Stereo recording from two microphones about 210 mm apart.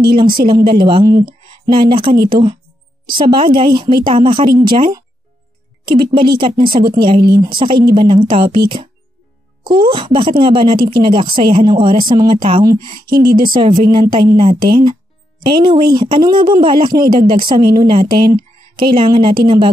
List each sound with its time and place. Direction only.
0.0 s speech: 20° right (ahead or behind)
13.1 s speech: 45° right (ahead or behind)
13.5 s speech: 25° right (ahead or behind)